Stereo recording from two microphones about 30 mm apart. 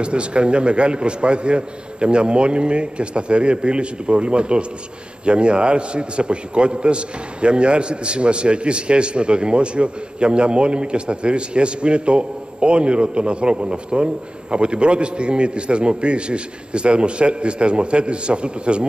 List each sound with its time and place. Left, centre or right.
0.0 s a man's voice: right